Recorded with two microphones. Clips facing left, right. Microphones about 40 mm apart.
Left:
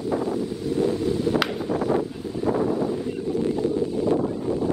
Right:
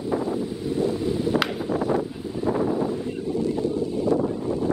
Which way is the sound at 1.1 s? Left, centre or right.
Centre.